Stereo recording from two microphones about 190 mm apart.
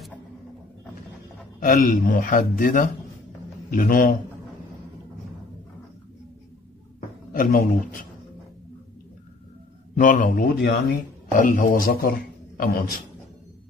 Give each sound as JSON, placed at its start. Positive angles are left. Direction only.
{"t": 1.6, "sound": "a man's voice", "side_deg": 45}
{"t": 7.3, "sound": "a man's voice", "side_deg": 50}
{"t": 9.9, "sound": "a man's voice", "side_deg": 45}